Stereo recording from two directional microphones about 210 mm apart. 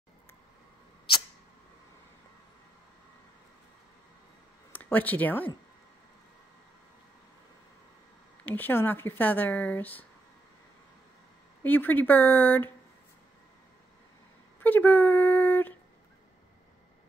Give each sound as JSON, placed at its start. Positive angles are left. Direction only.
{"t": 4.7, "sound": "speech", "side_deg": 10}
{"t": 8.5, "sound": "speech", "side_deg": 10}
{"t": 11.6, "sound": "speech", "side_deg": 10}
{"t": 14.6, "sound": "a sound", "side_deg": 10}